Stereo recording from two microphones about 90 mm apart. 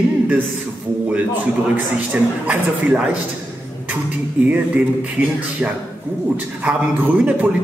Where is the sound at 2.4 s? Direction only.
15° right (ahead or behind).